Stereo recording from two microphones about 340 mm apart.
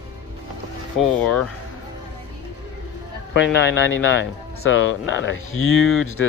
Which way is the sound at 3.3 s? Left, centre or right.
Left.